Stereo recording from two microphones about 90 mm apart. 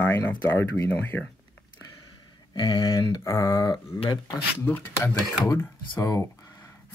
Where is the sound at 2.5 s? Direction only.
55° left (ahead or behind); by 3.7 s 40° left (ahead or behind).